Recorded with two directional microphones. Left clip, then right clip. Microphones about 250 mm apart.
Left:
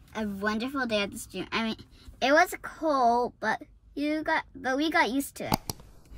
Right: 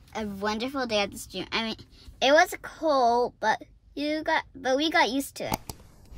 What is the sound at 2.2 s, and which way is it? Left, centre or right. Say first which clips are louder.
A woman's voice: right 2 dB; centre.